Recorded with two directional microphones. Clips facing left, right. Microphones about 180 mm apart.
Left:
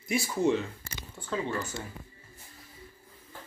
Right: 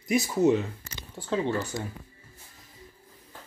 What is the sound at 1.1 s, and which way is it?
Speech, 30° right (ahead or behind).